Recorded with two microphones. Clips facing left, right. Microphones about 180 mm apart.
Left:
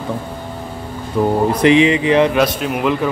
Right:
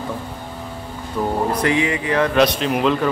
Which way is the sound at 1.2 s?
20° left (ahead or behind).